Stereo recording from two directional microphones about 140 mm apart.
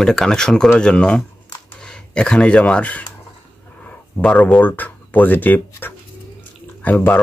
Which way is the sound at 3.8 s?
10° left (ahead or behind).